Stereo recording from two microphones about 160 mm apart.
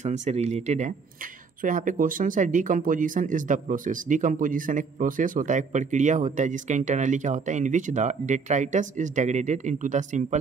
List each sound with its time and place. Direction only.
0.0 s speech: 50° right (ahead or behind)